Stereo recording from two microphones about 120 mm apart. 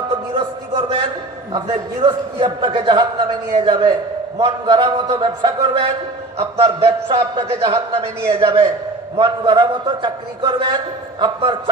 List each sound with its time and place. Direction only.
0.3 s a man's voice: 45° right (ahead or behind)